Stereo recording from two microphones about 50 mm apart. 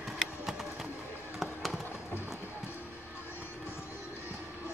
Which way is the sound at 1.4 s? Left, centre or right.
Centre.